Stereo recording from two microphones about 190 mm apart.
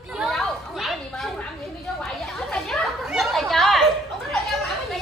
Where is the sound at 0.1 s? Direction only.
Centre (ahead or behind).